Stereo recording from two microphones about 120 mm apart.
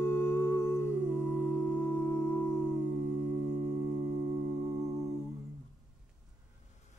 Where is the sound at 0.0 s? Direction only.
20° left (ahead or behind).